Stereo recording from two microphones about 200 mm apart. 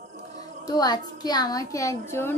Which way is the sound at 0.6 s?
20° left (ahead or behind).